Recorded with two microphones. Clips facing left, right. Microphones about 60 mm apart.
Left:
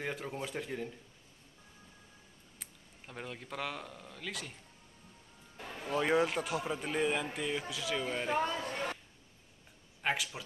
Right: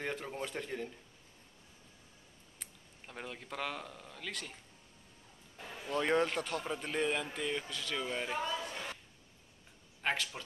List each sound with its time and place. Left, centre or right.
0.0 s a man's voice: centre
2.6 s speech: centre
5.9 s a man's voice: centre
8.3 s chatter: left
10.0 s a man's voice: centre